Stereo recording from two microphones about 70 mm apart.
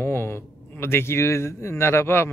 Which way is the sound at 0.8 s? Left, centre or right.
Left.